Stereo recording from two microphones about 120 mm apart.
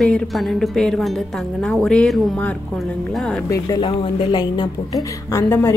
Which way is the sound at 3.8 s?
45° left (ahead or behind).